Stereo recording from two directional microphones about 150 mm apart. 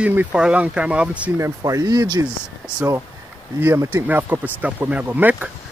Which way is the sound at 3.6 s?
15° right (ahead or behind).